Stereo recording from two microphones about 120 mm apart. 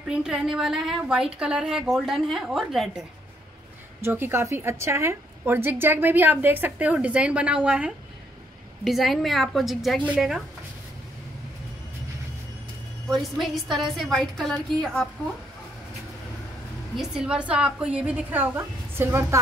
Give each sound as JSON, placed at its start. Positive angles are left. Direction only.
{"t": 0.1, "sound": "a woman's voice", "side_deg": -5}
{"t": 4.0, "sound": "a woman's voice", "side_deg": -20}
{"t": 13.1, "sound": "a woman's voice", "side_deg": 0}
{"t": 16.9, "sound": "a woman's voice", "side_deg": -5}